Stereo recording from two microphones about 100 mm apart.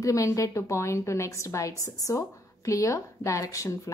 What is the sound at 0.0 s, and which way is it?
A woman's voice, 35° left (ahead or behind).